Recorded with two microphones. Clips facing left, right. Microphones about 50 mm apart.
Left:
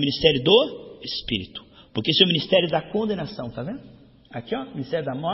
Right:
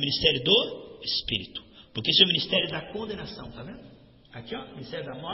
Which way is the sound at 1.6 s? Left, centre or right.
Left.